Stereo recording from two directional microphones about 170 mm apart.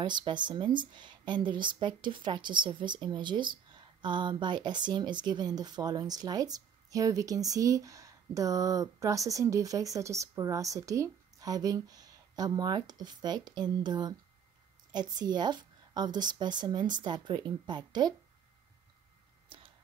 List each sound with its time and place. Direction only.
0.0 s speech: 25° right (ahead or behind)